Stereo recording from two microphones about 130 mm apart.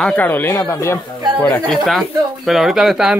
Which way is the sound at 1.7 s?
Centre (ahead or behind).